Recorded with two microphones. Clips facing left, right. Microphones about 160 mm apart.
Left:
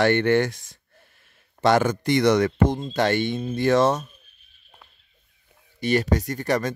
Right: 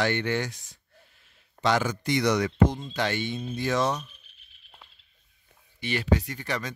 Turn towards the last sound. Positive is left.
turn(degrees=45)  # may be behind; listen again after turning